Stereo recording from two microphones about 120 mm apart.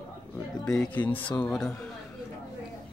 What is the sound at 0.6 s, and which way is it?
Speech, 10° left (ahead or behind).